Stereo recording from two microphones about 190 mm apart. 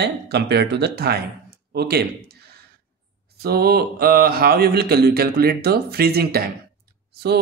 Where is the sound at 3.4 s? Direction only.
55° right (ahead or behind).